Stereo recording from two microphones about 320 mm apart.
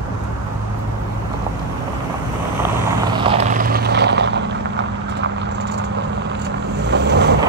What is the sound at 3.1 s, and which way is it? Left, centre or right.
Vehicle, centre.